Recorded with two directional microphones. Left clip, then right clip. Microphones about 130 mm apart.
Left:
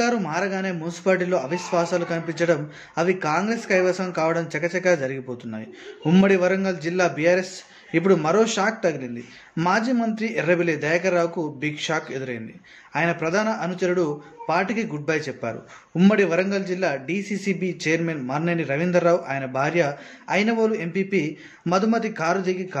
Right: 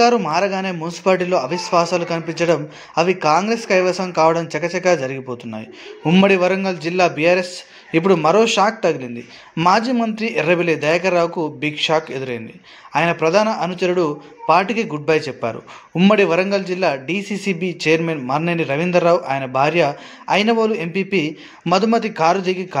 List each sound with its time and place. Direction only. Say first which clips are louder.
0.0 s a man's voice: right 8 dB; 10° right (ahead or behind)